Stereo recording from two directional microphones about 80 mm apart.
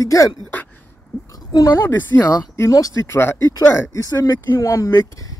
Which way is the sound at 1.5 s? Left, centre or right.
Left.